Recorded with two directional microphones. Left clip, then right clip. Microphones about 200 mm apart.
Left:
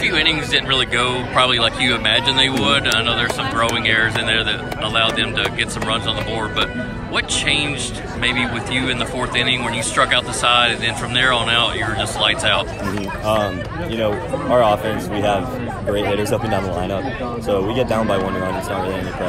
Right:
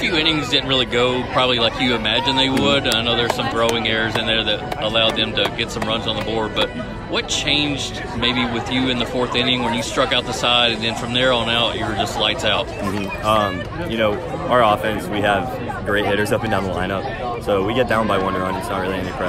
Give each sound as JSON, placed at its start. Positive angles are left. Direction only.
{"t": 0.0, "sound": "speech", "side_deg": -20}
{"t": 7.2, "sound": "speech", "side_deg": -15}
{"t": 13.9, "sound": "speech", "side_deg": -5}